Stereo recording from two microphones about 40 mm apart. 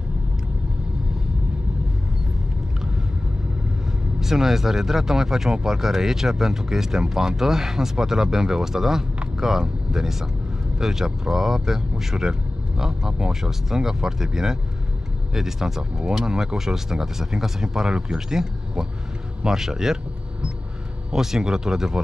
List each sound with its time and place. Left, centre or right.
4.2 s speech: centre
21.1 s speech: centre